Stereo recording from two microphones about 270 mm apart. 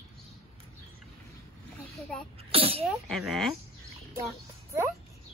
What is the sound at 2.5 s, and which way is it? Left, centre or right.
Sneeze, right.